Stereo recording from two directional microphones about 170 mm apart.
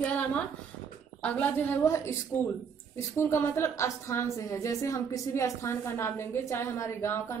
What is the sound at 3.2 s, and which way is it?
Speech, 15° left (ahead or behind).